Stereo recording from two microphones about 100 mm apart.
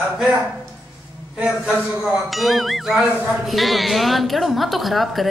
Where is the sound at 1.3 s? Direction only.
15° right (ahead or behind).